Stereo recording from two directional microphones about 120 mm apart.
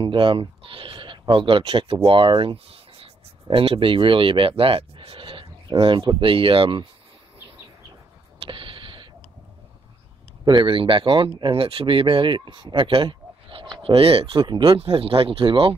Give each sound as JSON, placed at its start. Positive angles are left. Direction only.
{"t": 0.0, "sound": "speech", "side_deg": -45}
{"t": 8.4, "sound": "a sound", "side_deg": -45}
{"t": 10.4, "sound": "speech", "side_deg": -40}